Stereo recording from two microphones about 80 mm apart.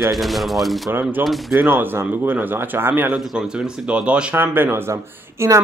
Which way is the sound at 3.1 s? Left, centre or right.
Centre.